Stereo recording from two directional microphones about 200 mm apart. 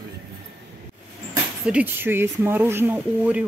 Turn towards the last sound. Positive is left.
turn(degrees=-10)  # may be behind; listen again after turning